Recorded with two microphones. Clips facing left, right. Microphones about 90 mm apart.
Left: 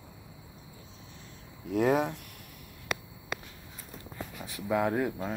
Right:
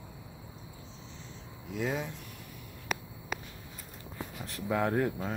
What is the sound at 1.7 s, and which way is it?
Speech, 60° left (ahead or behind).